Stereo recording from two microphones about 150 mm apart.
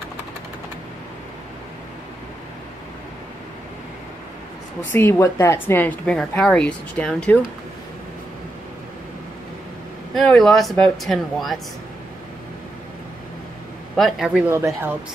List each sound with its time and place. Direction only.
4.9 s a woman's voice: 15° left (ahead or behind)
10.1 s speech: centre (ahead or behind)
13.9 s speech: centre (ahead or behind)
14.5 s speech: 15° right (ahead or behind)